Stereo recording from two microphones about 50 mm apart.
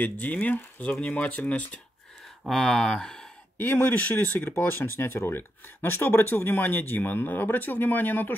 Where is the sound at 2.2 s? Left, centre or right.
Centre.